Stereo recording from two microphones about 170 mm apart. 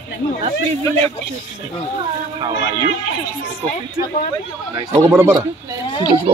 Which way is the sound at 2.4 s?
25° right (ahead or behind).